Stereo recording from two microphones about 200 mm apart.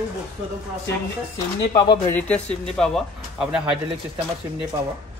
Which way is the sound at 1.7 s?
20° left (ahead or behind).